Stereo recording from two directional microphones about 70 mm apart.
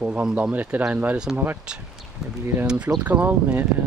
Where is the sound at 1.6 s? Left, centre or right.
Centre.